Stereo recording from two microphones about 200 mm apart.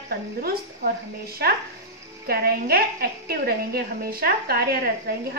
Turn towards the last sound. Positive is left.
turn(degrees=-50)  # may be behind; listen again after turning